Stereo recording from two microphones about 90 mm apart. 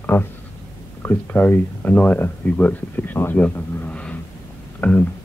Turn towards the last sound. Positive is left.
turn(degrees=20)  # may be behind; listen again after turning